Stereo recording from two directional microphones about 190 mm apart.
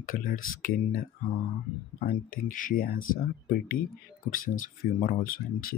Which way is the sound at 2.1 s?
45° left (ahead or behind).